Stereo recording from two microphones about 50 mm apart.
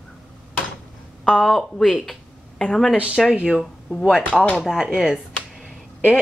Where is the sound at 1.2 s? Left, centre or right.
Centre.